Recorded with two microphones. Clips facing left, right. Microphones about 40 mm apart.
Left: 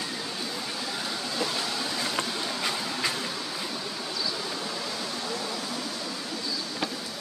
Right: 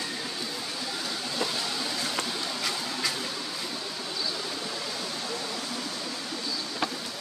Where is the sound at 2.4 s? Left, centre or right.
Left.